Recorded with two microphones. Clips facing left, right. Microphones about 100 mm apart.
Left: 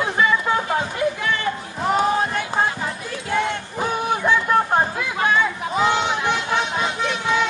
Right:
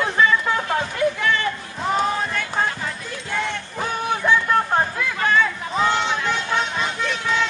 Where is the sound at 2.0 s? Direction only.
25° left (ahead or behind).